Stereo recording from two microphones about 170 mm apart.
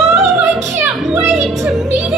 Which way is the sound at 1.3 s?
Centre (ahead or behind).